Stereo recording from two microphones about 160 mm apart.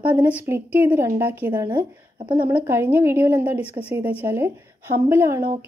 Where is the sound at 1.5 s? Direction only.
25° right (ahead or behind).